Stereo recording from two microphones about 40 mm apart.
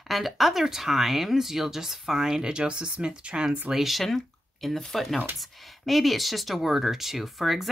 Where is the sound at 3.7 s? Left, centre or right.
Centre.